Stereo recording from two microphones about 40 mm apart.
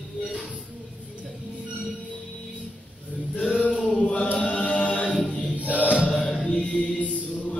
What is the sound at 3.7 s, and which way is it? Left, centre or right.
Chant, left.